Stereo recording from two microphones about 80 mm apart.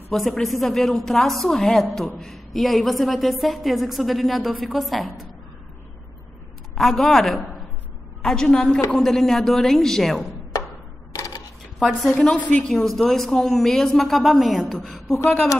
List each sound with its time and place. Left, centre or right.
0.1 s a woman's voice: centre
6.7 s a woman's voice: centre
11.1 s camera: left
11.8 s a woman's voice: centre